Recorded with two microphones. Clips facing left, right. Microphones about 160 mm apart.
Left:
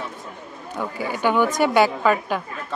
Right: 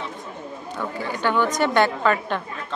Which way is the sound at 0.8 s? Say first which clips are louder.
Left 2 dB; 10° left (ahead or behind).